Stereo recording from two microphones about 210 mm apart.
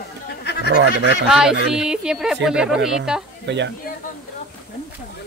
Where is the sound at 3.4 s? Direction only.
55° right (ahead or behind).